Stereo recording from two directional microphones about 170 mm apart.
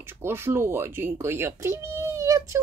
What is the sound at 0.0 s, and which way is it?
Speech, 15° right (ahead or behind).